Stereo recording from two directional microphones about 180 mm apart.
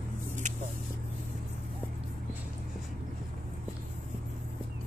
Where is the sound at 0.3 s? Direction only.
40° right (ahead or behind).